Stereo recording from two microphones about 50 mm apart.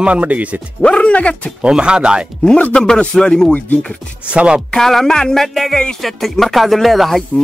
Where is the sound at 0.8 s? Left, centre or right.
Left.